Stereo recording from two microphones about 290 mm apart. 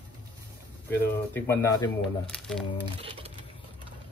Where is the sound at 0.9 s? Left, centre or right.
Centre.